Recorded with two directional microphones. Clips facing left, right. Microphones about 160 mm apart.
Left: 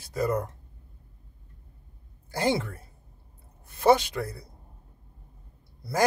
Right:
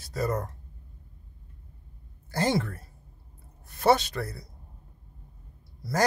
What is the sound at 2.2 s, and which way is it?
Speech, 15° left (ahead or behind).